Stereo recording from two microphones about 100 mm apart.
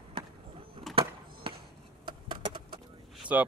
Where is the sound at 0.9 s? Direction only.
60° right (ahead or behind).